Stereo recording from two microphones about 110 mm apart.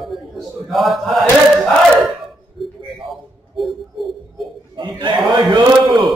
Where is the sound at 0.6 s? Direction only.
Centre (ahead or behind).